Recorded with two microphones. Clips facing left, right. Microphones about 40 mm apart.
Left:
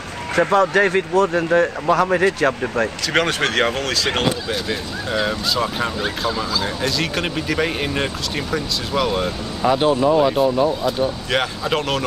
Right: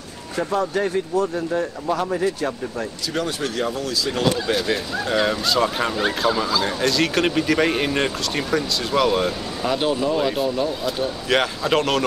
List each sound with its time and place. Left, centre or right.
0.4 s speech: left
4.3 s speech: centre